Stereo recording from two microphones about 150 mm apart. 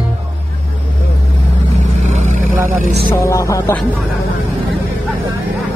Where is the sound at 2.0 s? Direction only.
55° right (ahead or behind).